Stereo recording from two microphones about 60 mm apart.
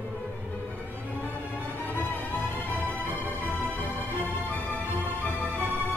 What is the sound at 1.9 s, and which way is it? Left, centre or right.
Music, left.